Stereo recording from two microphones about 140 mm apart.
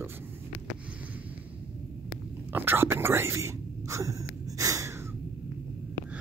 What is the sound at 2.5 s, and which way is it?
Speech, 15° right (ahead or behind).